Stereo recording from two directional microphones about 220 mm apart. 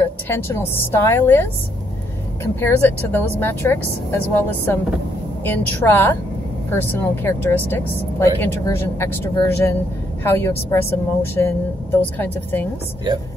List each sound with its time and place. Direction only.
0.3 s a woman's voice: 10° left (ahead or behind)